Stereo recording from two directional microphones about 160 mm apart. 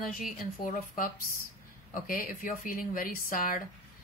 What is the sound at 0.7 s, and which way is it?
Speech, 55° left (ahead or behind).